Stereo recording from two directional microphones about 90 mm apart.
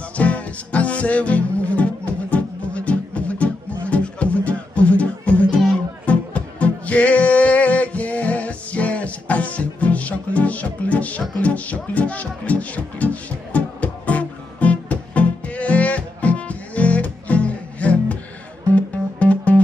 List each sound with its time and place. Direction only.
0.1 s music: 15° left (ahead or behind)